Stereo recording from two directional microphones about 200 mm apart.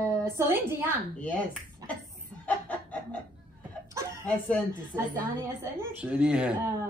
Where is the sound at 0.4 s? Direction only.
15° right (ahead or behind).